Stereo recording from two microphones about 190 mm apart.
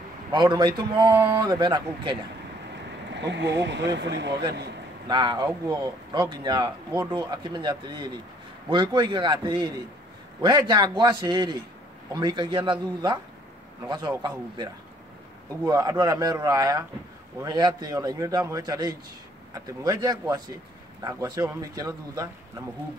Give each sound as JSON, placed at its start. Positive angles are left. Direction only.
{"t": 0.3, "sound": "a man's voice", "side_deg": -25}
{"t": 3.1, "sound": "speech", "side_deg": -65}
{"t": 5.0, "sound": "a man's voice", "side_deg": -20}
{"t": 15.7, "sound": "a man's voice", "side_deg": -20}